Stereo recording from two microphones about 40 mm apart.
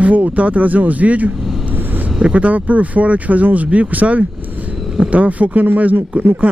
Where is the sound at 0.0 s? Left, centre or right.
Right.